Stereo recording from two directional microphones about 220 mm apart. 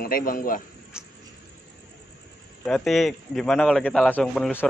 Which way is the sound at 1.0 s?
5° right (ahead or behind).